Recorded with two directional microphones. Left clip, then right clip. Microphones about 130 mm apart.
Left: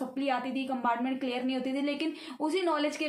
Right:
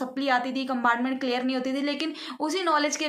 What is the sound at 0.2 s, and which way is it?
A woman's voice, 10° left (ahead or behind).